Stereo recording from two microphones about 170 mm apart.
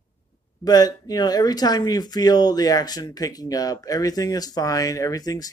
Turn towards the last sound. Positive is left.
turn(degrees=20)  # may be behind; listen again after turning